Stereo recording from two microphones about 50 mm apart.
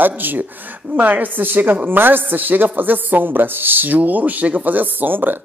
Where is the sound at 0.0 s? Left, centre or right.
Right.